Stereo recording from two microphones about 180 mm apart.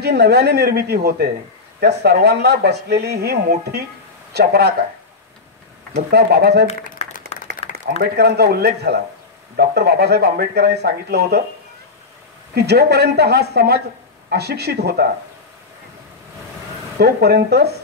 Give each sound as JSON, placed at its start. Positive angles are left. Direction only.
{"t": 0.0, "sound": "speech", "side_deg": -65}
{"t": 6.0, "sound": "speech", "side_deg": -65}
{"t": 6.7, "sound": "a sound", "side_deg": 40}
{"t": 8.0, "sound": "speech", "side_deg": -60}
{"t": 12.5, "sound": "speech", "side_deg": -65}
{"t": 17.0, "sound": "speech", "side_deg": -60}